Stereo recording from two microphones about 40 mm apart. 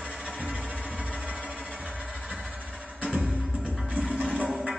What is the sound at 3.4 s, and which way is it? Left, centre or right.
Music, centre.